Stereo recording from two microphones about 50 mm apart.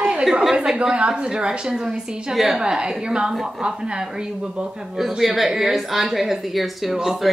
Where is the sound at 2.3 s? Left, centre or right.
Centre.